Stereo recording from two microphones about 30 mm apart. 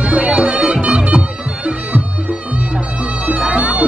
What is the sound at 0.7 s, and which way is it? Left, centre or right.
Bagpipes, right.